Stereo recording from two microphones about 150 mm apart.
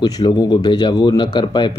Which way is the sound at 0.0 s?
30° left (ahead or behind).